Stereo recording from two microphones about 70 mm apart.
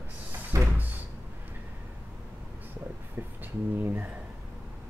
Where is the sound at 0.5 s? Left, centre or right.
Right.